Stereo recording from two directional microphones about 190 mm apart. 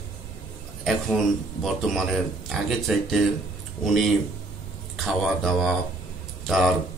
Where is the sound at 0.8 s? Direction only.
Centre (ahead or behind).